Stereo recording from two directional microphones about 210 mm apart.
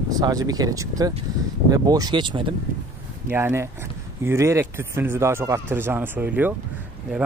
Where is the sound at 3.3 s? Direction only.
10° right (ahead or behind).